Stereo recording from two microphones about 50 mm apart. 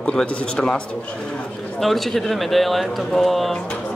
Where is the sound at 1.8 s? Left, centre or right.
Centre.